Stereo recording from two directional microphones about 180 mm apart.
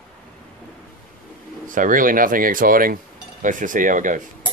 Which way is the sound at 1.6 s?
45° right (ahead or behind).